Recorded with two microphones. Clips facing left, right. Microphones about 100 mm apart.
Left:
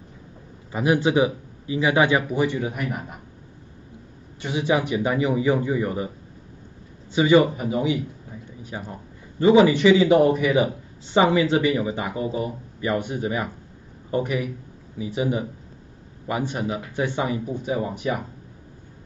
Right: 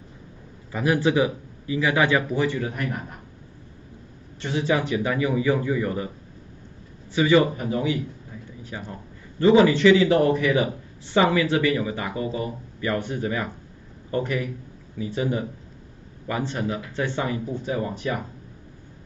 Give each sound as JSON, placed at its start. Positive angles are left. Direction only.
{"t": 0.7, "sound": "a man's voice", "side_deg": 20}
{"t": 4.4, "sound": "a man's voice", "side_deg": 15}
{"t": 7.2, "sound": "a man's voice", "side_deg": 20}